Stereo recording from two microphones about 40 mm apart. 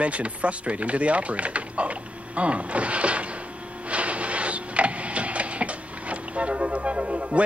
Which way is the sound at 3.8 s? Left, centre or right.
Right.